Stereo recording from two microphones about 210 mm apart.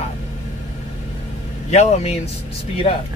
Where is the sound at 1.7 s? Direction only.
30° left (ahead or behind).